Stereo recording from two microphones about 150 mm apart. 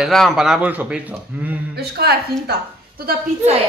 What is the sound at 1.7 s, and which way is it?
A woman's voice, 90° right.